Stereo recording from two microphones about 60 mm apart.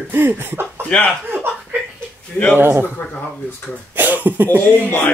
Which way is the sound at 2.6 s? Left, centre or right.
Right.